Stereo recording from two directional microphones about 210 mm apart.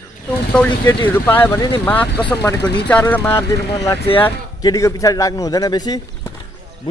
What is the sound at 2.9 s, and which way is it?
A man's voice, 5° left (ahead or behind).